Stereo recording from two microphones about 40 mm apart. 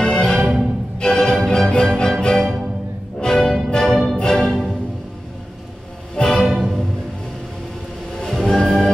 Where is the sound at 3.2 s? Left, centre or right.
Centre.